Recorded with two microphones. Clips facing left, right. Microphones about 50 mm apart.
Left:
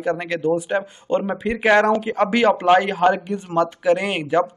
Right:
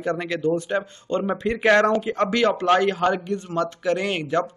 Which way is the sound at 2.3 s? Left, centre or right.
Centre.